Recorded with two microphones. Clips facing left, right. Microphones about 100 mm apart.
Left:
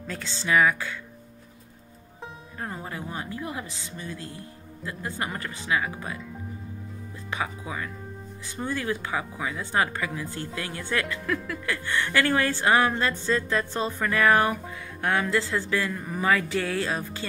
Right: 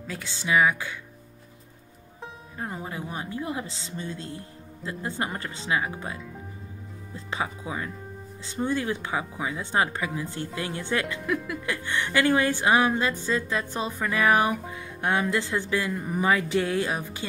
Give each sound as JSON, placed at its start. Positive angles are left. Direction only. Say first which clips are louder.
{"t": 0.0, "sound": "speech", "louder": "left 1 dB", "side_deg": -5}
{"t": 0.3, "sound": "speech", "louder": "even", "side_deg": -15}
{"t": 2.6, "sound": "speech", "louder": "right 1 dB", "side_deg": -15}
{"t": 7.2, "sound": "speech", "louder": "right 1 dB", "side_deg": -25}